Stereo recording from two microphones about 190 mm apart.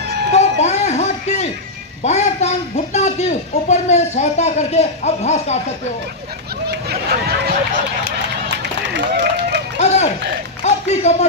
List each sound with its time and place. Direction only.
0.3 s music: 35° left (ahead or behind)
2.0 s speech: 35° left (ahead or behind)
8.9 s run: 65° right (ahead or behind)
9.8 s run: 35° left (ahead or behind)
10.6 s a sound: 35° left (ahead or behind)